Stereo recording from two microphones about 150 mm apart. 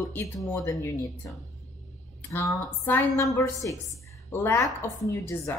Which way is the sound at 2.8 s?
15° left (ahead or behind).